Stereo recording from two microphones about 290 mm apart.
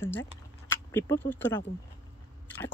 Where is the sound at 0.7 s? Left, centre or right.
Centre.